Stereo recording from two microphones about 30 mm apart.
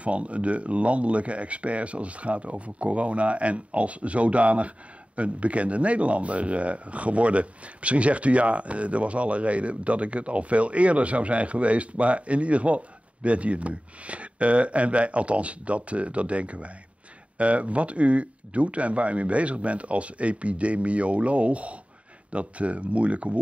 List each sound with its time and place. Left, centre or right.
0.0 s speech: right